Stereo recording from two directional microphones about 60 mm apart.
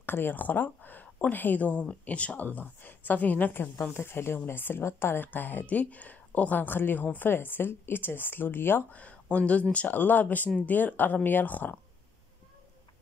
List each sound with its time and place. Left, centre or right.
0.0 s a woman's voice: left
3.9 s speech: left
8.9 s a woman's voice: left